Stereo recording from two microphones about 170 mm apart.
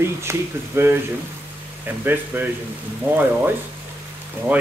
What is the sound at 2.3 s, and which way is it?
Speech, 10° right (ahead or behind).